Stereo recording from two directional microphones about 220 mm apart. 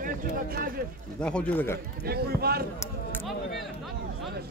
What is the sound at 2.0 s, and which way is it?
Speech, 45° right (ahead or behind).